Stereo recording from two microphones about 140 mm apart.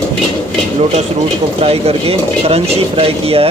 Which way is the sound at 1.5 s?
45° right (ahead or behind).